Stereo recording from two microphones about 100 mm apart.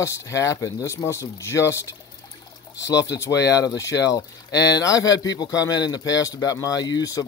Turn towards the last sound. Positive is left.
turn(degrees=35)  # may be behind; listen again after turning